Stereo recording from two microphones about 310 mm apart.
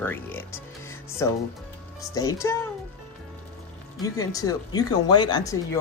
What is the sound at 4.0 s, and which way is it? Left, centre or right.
Speech, centre.